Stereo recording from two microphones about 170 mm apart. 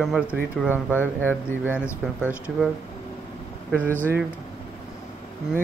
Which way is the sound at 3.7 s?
10° left (ahead or behind).